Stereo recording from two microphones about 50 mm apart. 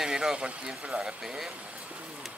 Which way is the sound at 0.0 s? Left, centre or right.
Centre.